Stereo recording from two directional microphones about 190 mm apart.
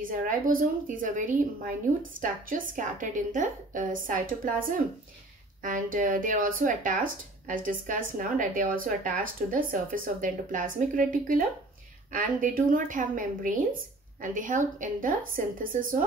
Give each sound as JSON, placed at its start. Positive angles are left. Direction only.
{"t": 0.0, "sound": "speech", "side_deg": -45}